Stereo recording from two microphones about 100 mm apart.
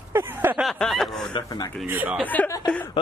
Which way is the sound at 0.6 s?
Centre (ahead or behind).